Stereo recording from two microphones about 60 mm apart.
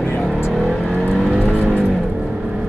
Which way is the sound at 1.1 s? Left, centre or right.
Centre.